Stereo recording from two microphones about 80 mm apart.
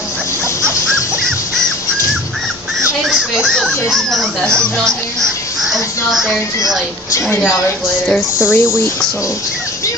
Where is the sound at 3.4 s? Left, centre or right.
Centre.